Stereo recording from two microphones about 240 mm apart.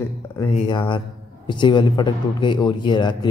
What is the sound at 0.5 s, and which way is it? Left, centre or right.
A man's voice, centre.